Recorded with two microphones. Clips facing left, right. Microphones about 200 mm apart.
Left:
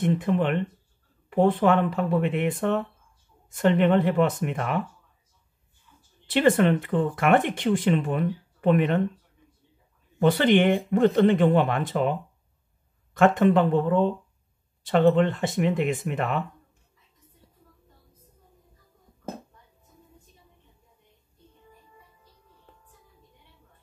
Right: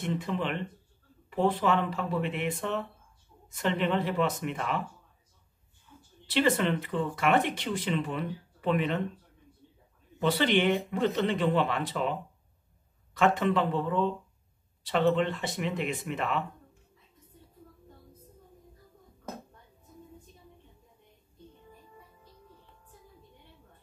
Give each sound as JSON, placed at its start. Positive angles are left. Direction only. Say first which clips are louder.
{"t": 0.0, "sound": "speech", "louder": "left 8 dB", "side_deg": 55}
{"t": 6.2, "sound": "speech", "louder": "left 6 dB", "side_deg": 50}
{"t": 10.1, "sound": "speech", "louder": "left 6 dB", "side_deg": 50}